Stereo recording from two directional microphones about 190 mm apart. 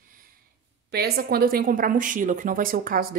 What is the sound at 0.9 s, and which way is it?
A woman's voice, 55° right (ahead or behind).